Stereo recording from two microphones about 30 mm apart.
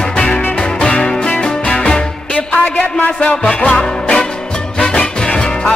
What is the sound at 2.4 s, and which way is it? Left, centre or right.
Music, left.